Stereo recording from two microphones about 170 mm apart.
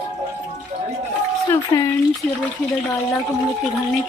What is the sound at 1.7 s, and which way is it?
Speech, 20° left (ahead or behind).